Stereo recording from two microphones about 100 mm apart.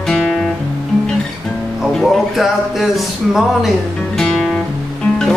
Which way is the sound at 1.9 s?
Centre (ahead or behind).